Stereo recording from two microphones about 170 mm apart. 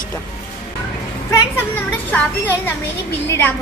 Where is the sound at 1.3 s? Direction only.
10° left (ahead or behind).